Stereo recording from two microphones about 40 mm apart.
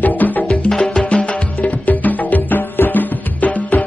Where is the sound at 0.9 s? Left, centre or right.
Left.